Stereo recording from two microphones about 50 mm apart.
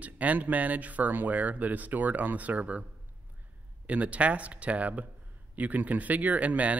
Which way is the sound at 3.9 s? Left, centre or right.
Right.